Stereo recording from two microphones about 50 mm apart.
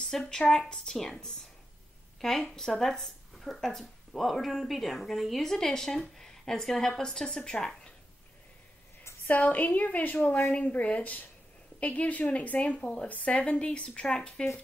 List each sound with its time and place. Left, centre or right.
0.0 s a woman's voice: centre
2.1 s a woman's voice: centre
9.3 s a woman's voice: left; by 14.4 s centre